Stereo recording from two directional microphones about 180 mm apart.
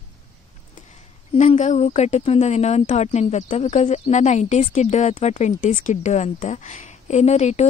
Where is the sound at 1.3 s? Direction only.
35° left (ahead or behind).